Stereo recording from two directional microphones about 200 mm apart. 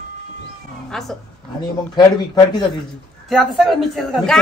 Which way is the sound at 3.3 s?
Centre (ahead or behind).